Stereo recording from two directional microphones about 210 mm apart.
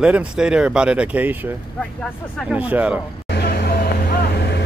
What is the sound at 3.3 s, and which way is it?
Vehicle, 50° left (ahead or behind).